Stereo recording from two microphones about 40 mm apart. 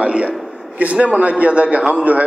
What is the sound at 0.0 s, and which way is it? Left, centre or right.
A man's voice, right.